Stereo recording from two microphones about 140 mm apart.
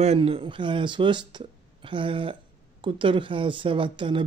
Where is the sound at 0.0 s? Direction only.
45° right (ahead or behind).